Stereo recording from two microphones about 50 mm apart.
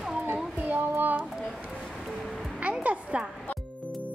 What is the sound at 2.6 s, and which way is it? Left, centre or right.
Music, right.